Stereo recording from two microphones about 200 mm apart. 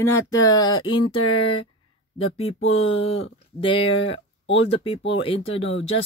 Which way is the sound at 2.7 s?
30° left (ahead or behind).